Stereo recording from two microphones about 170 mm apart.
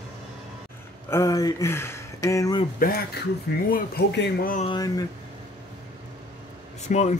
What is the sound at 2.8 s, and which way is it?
Speech, 60° left (ahead or behind).